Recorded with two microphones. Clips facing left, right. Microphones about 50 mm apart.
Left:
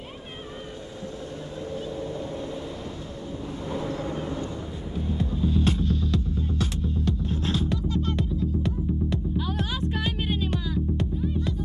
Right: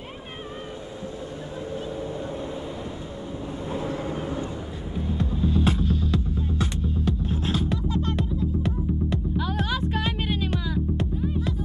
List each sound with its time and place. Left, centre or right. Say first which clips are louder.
1.7 s vehicle: even; centre
3.7 s vehicle: right 1 dB; right
5.2 s music: right 1 dB; centre